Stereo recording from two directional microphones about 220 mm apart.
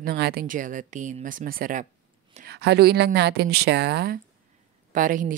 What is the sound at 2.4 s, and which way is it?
Speech, 50° right (ahead or behind).